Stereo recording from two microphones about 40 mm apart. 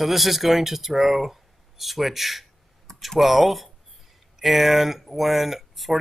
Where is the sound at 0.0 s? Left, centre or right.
Centre.